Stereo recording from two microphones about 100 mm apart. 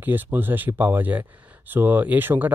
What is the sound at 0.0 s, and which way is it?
Speech, 20° right (ahead or behind).